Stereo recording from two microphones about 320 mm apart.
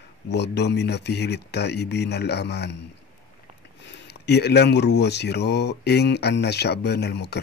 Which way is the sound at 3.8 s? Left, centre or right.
Left.